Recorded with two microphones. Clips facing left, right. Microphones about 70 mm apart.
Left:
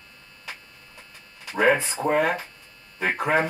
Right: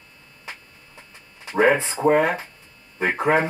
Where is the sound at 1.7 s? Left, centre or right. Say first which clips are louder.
Right 4 dB; right.